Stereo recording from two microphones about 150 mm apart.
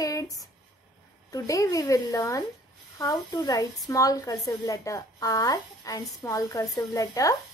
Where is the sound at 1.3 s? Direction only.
20° left (ahead or behind).